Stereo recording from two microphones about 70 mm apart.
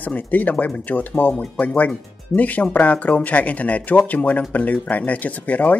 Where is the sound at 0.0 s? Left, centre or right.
Left.